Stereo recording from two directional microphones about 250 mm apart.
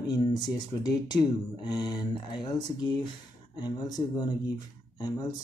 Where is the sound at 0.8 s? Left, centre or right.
Centre.